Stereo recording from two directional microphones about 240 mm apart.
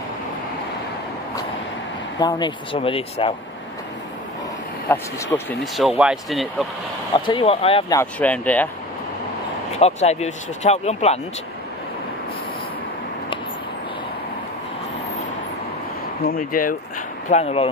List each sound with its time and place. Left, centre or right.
2.1 s speech: centre
4.8 s speech: centre
7.2 s speech: centre
8.0 s speech: centre
9.8 s speech: left
16.3 s speech: left
17.3 s speech: left